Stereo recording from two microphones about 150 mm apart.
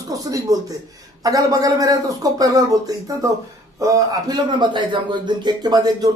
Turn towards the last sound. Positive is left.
turn(degrees=-25)  # may be behind; listen again after turning